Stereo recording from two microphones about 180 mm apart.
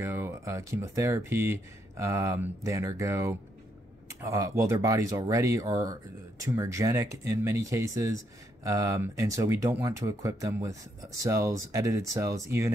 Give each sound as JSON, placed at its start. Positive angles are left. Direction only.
{"t": 0.0, "sound": "speech", "side_deg": -15}